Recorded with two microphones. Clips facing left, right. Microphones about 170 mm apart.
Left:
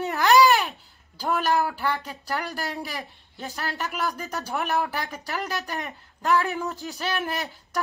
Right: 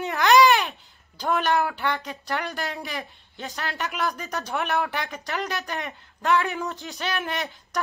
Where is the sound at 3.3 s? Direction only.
40° left (ahead or behind).